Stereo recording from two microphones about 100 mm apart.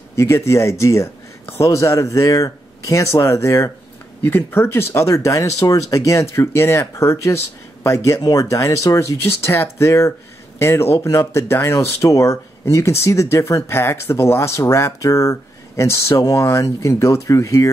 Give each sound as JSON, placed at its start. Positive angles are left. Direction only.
{"t": 0.1, "sound": "speech", "side_deg": 30}